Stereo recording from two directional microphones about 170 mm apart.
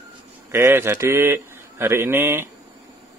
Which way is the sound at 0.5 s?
15° right (ahead or behind).